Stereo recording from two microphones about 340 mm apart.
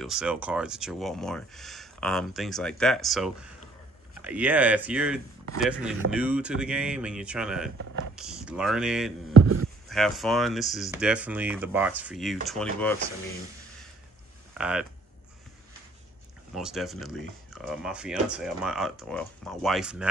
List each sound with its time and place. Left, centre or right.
0.0 s speech: centre
9.4 s a sound: right
9.8 s speech: centre
14.6 s speech: centre
16.5 s speech: centre